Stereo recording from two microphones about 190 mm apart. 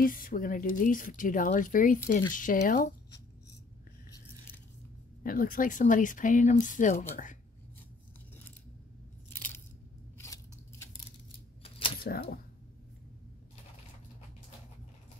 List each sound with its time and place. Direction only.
0.0 s speech: 50° left (ahead or behind)
5.2 s speech: 45° left (ahead or behind)
9.3 s coin: 10° left (ahead or behind)
10.1 s scissors: 15° left (ahead or behind)
11.6 s typewriter: 30° left (ahead or behind)
12.0 s speech: 50° left (ahead or behind)